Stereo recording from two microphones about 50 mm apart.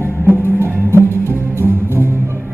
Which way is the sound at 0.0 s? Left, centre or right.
Right.